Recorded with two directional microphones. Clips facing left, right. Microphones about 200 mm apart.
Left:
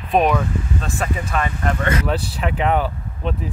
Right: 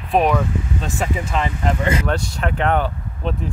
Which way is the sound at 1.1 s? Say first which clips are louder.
Right 1 dB; 20° right (ahead or behind).